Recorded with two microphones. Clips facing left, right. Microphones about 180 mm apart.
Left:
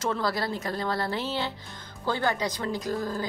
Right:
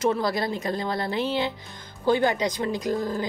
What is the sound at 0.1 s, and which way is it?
Speech, 20° right (ahead or behind).